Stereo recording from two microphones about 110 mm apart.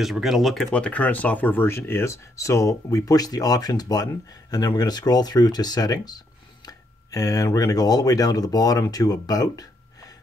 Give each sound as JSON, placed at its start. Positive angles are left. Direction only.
{"t": 0.0, "sound": "speech", "side_deg": 0}